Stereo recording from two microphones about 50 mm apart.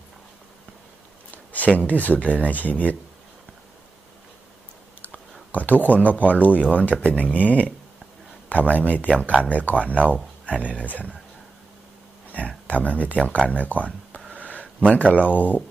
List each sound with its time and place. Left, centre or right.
1.3 s a sound: left
1.9 s speech: left
5.5 s speech: left
12.6 s speech: left
14.4 s a sound: left
14.9 s speech: left